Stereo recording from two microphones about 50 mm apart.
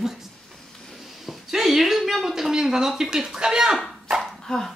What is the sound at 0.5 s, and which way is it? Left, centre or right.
Vehicle, centre.